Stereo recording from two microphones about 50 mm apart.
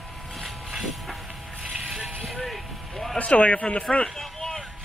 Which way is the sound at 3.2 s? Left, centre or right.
Left.